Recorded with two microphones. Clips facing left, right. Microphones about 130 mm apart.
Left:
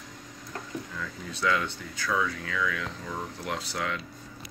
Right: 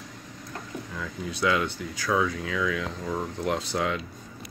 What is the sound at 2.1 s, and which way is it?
Speech, 20° right (ahead or behind).